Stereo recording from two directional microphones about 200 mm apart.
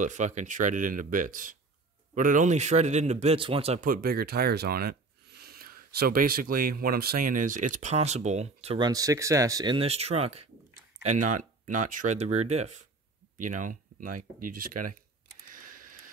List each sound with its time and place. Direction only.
0.0 s speech: 35° right (ahead or behind)
3.8 s speech: 50° right (ahead or behind)
15.5 s a sound: 45° right (ahead or behind)